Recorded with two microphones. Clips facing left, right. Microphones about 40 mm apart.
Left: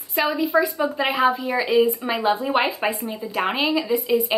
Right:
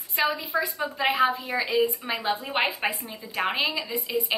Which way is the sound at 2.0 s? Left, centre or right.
Centre.